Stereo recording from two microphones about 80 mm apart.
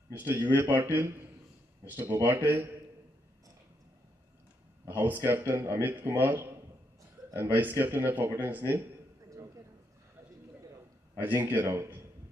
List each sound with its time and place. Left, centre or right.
0.1 s speech: right
4.8 s speech: right
7.5 s speech: right
11.1 s speech: right